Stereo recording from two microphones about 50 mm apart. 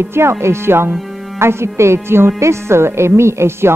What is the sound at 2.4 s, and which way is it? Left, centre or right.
Speech, right.